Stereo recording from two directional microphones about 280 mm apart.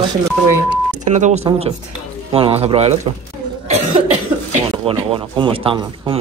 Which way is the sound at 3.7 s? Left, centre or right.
Right.